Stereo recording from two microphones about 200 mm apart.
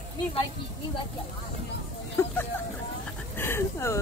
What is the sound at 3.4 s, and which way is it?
Speech, 10° left (ahead or behind).